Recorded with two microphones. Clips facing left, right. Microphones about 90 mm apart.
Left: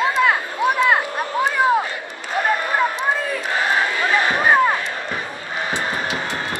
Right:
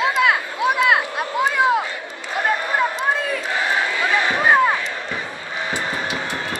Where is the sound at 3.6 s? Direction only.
50° left (ahead or behind).